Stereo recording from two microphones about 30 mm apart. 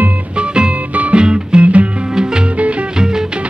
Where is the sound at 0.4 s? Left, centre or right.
Right.